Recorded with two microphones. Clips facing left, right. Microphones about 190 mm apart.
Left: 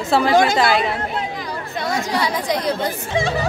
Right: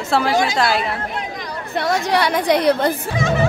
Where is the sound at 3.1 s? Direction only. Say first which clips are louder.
Right 2 dB; 30° left (ahead or behind).